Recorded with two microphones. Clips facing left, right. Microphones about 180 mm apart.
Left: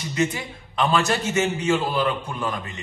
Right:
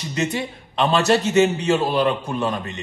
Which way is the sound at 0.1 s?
30° right (ahead or behind).